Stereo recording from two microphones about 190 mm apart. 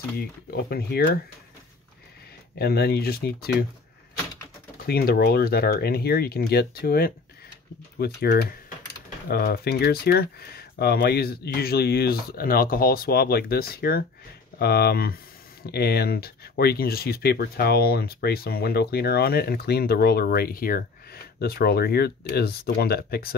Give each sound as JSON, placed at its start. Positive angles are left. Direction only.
{"t": 0.2, "sound": "speech", "side_deg": 55}
{"t": 2.6, "sound": "speech", "side_deg": 55}
{"t": 4.8, "sound": "speech", "side_deg": 55}